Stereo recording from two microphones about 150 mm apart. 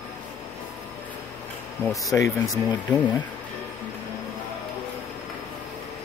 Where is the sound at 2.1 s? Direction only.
20° left (ahead or behind).